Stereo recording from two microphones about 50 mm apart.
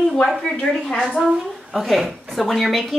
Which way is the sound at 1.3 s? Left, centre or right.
Centre.